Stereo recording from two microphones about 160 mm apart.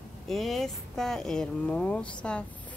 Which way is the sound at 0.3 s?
Centre (ahead or behind).